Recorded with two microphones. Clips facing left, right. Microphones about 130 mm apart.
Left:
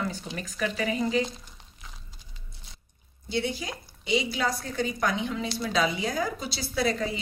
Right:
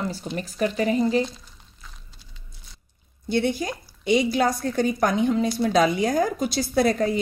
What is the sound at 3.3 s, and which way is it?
A woman's voice, 50° right (ahead or behind).